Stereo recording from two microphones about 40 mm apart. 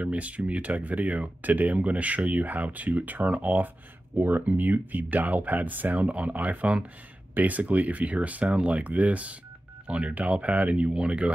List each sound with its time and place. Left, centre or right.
0.0 s speech: right
5.9 s speech: right